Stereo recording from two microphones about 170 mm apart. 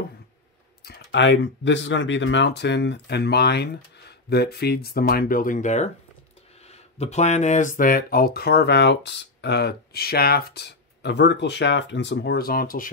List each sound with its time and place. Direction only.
0.8 s speech: 85° left; by 12.9 s 55° left (ahead or behind)